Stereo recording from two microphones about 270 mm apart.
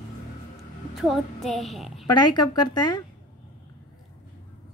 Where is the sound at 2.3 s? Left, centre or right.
Centre.